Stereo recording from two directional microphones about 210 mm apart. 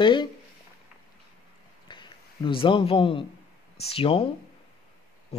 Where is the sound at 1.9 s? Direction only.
20° left (ahead or behind).